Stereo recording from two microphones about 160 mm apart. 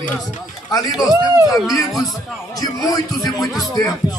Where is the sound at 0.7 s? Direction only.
25° left (ahead or behind).